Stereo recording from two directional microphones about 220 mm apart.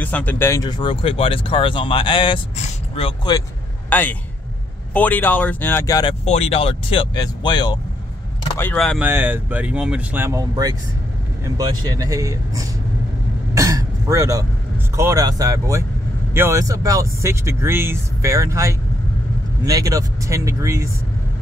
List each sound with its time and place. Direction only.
0.0 s speech: 5° left (ahead or behind)
3.9 s speech: 10° left (ahead or behind)
6.2 s speech: 30° left (ahead or behind)
8.5 s speech: 5° left (ahead or behind)
9.0 s speech: 10° right (ahead or behind)
13.6 s throat clearing: 15° right (ahead or behind)
15.0 s speech: 15° right (ahead or behind)